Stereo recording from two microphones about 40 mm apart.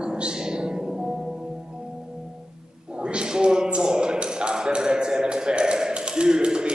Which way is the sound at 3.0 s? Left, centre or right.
Right.